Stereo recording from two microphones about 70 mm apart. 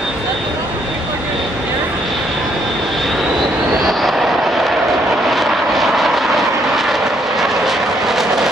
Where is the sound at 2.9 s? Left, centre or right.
Centre.